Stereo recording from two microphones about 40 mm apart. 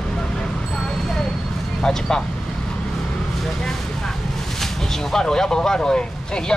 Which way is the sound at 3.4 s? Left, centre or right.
Centre.